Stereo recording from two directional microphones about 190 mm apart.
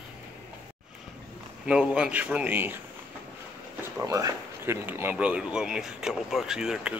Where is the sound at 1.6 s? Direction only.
5° right (ahead or behind).